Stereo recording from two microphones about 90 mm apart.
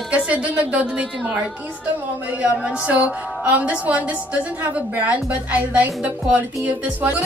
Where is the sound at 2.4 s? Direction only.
10° right (ahead or behind).